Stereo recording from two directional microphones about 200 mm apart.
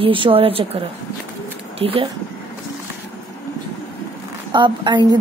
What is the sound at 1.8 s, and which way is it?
Speech, 25° right (ahead or behind).